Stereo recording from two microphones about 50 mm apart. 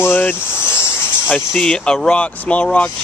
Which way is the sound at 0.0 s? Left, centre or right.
Left.